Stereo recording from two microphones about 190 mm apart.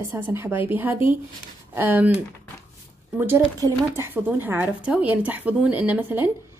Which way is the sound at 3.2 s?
10° right (ahead or behind).